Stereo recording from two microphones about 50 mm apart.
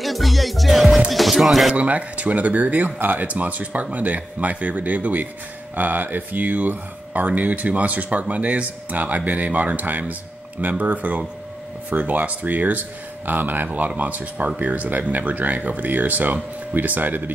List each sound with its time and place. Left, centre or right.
0.0 s speech: centre
1.8 s speech: right